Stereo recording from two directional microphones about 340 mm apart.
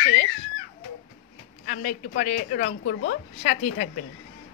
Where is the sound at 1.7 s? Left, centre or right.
Left.